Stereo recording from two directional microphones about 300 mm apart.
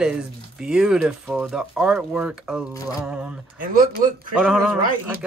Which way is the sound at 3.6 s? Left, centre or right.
Right.